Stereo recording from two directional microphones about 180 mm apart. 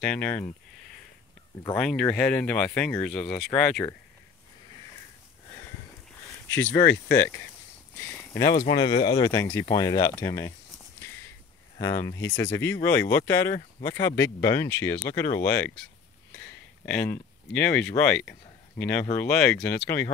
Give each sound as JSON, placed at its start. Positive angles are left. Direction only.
{"t": 0.0, "sound": "speech", "side_deg": 10}
{"t": 1.8, "sound": "speech", "side_deg": 5}
{"t": 6.5, "sound": "speech", "side_deg": 15}
{"t": 8.6, "sound": "speech", "side_deg": 25}
{"t": 11.8, "sound": "speech", "side_deg": 15}
{"t": 16.8, "sound": "speech", "side_deg": 10}